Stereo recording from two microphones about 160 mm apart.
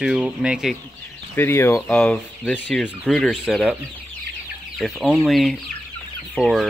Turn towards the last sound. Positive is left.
turn(degrees=0)  # may be behind; listen again after turning